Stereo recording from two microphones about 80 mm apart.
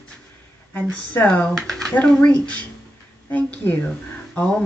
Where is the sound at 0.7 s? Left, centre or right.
Centre.